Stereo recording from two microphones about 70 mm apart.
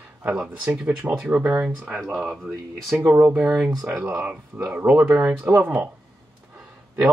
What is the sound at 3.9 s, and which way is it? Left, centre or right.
Speech, right.